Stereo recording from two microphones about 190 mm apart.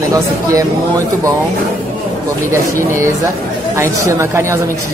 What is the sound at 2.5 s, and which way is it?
Speech, 15° right (ahead or behind).